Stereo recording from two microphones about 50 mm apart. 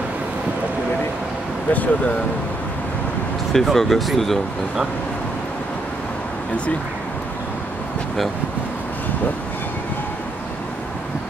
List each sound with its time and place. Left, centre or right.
1.7 s speech: left
3.5 s speech: centre